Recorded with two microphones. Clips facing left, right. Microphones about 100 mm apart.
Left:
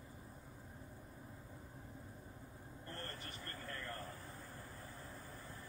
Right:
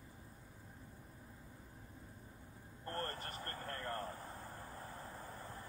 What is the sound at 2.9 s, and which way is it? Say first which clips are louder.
Vehicle: right 7 dB; 45° right (ahead or behind).